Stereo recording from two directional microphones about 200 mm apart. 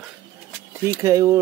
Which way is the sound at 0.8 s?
15° right (ahead or behind).